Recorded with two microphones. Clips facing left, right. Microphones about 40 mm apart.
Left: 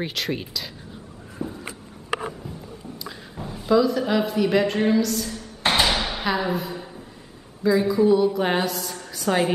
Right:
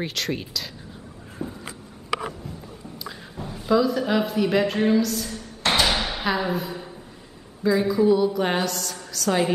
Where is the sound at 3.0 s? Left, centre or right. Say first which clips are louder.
Right 2 dB; centre.